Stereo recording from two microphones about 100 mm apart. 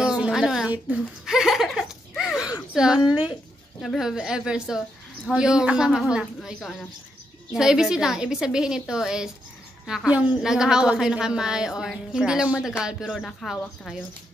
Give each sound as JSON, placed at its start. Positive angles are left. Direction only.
{"t": 0.0, "sound": "a sound", "side_deg": -5}
{"t": 0.7, "sound": "a woman's voice", "side_deg": -10}
{"t": 13.2, "sound": "a woman's voice", "side_deg": 5}